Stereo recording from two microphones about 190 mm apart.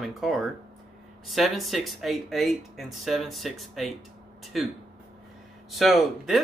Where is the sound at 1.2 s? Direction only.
Centre (ahead or behind).